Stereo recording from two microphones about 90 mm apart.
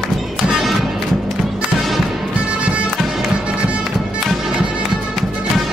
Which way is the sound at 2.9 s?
5° right (ahead or behind).